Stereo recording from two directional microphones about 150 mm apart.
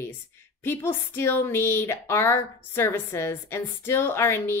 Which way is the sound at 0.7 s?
15° left (ahead or behind).